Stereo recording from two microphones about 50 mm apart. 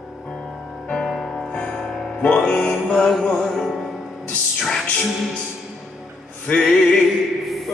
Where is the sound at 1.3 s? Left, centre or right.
Centre.